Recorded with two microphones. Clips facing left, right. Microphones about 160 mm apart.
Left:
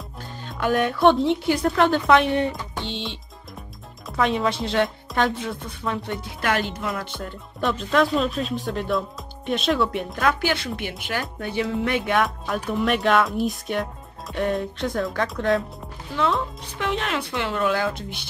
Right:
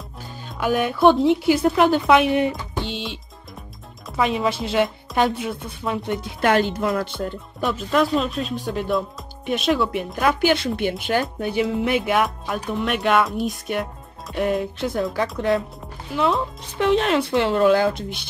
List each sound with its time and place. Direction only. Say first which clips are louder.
0.5 s speech: even; 5° right (ahead or behind)
4.2 s speech: right 1 dB; 5° right (ahead or behind)
6.4 s speech: right 6 dB; 30° right (ahead or behind)
7.6 s speech: even; 5° right (ahead or behind)
10.1 s speech: right 5 dB; 20° right (ahead or behind); by 15.6 s centre (ahead or behind)
16.1 s speech: right 2 dB; 15° right (ahead or behind)
16.3 s speech: right 4 dB; 30° right (ahead or behind)